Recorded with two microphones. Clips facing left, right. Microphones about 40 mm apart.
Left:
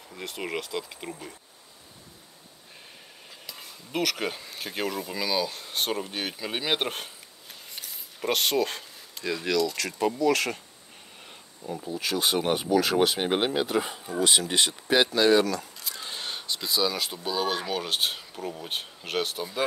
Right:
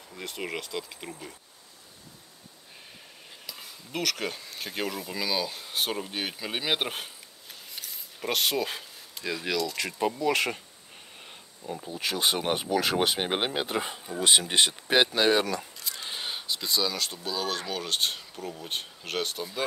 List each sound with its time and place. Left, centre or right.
0.1 s speech: centre
3.4 s speech: centre
7.7 s a sound: centre
9.8 s speech: centre
11.6 s speech: centre
11.9 s speech: right
15.8 s speech: centre